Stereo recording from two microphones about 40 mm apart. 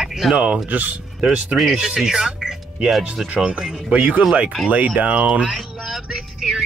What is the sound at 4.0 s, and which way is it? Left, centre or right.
Speech, right.